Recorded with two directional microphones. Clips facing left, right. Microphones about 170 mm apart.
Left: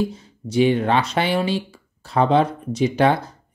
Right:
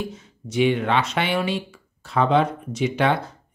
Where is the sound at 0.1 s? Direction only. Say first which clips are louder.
Left 5 dB; 35° left (ahead or behind).